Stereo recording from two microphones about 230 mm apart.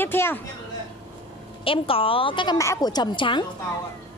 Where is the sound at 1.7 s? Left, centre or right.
Left.